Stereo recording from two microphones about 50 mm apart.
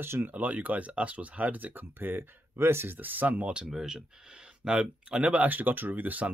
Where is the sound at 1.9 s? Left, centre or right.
Right.